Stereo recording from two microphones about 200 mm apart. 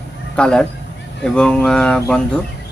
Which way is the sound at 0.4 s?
5° left (ahead or behind).